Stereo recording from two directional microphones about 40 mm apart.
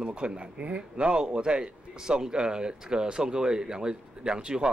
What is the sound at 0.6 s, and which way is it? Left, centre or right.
Speech, right.